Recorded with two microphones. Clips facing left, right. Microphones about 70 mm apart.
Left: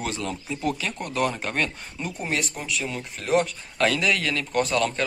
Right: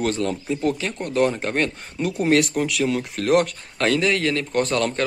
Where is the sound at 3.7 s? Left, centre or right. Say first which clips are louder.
Right 2 dB; right.